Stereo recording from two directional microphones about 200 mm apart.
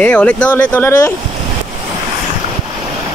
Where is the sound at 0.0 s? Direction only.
5° left (ahead or behind).